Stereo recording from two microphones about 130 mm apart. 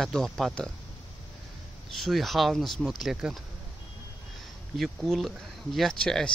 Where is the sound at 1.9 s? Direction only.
Centre (ahead or behind).